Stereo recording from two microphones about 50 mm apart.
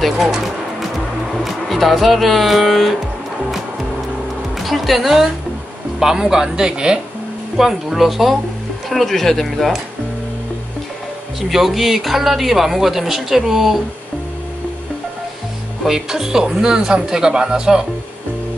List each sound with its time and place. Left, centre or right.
0.0 s music: centre
4.6 s speech: centre
11.4 s speech: centre
15.8 s speech: centre